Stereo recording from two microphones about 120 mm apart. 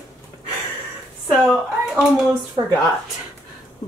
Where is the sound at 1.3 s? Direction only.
5° right (ahead or behind).